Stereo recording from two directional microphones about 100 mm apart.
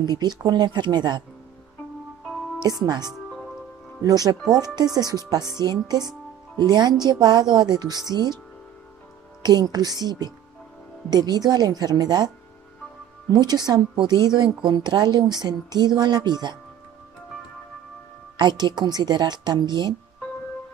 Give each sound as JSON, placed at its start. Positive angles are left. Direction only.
{"t": 0.0, "sound": "speech", "side_deg": -45}
{"t": 2.6, "sound": "speech", "side_deg": -45}
{"t": 3.3, "sound": "music", "side_deg": 5}
{"t": 4.0, "sound": "speech", "side_deg": -40}
{"t": 9.4, "sound": "speech", "side_deg": -45}
{"t": 13.3, "sound": "speech", "side_deg": -45}
{"t": 18.4, "sound": "speech", "side_deg": -45}